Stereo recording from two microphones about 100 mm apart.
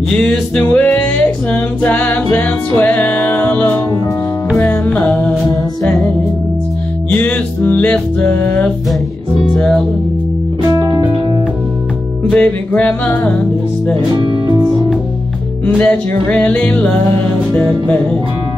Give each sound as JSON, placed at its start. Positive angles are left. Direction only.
{"t": 0.2, "sound": "music", "side_deg": 5}
{"t": 7.1, "sound": "music", "side_deg": 15}
{"t": 10.6, "sound": "music", "side_deg": -40}
{"t": 12.4, "sound": "music", "side_deg": 15}
{"t": 14.1, "sound": "speech", "side_deg": -45}
{"t": 15.6, "sound": "music", "side_deg": 15}